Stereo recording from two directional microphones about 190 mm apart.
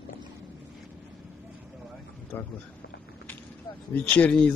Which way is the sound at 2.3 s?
10° left (ahead or behind).